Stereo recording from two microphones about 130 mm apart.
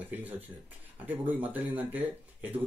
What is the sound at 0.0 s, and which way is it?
Speech, 15° right (ahead or behind).